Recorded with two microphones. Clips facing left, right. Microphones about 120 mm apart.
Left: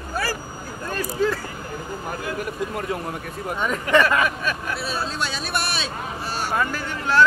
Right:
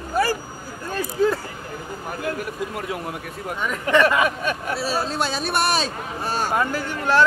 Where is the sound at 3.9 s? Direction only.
25° right (ahead or behind).